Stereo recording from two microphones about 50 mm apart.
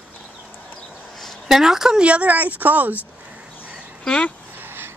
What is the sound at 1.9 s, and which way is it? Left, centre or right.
Speech, right.